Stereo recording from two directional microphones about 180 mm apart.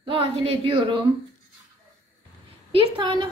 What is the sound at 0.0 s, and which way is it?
A woman's voice, 30° right (ahead or behind).